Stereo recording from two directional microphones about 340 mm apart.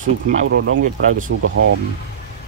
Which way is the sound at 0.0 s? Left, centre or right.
Right.